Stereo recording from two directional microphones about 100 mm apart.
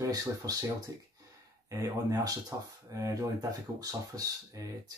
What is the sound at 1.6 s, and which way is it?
Speech, 35° right (ahead or behind).